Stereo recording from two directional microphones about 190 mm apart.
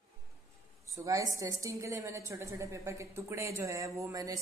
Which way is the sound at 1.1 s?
15° right (ahead or behind).